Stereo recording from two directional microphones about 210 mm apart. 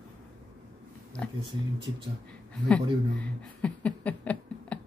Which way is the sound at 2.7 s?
5° left (ahead or behind).